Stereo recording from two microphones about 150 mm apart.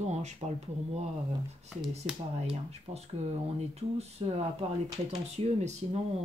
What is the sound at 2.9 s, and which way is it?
Speech, 40° right (ahead or behind).